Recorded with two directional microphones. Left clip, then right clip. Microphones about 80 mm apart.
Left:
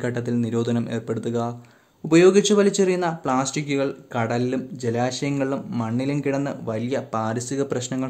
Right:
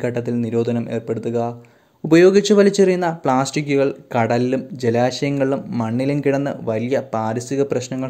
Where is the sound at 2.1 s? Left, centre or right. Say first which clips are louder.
Right 3 dB; right.